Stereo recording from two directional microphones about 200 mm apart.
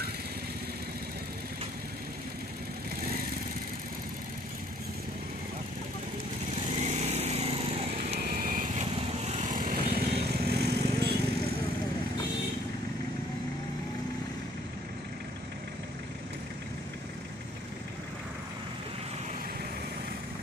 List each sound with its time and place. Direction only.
6.8 s lawn mower: 35° right (ahead or behind)
8.2 s vehicle: 45° right (ahead or behind)
8.8 s vehicle: 30° right (ahead or behind); by 11.1 s 55° right (ahead or behind)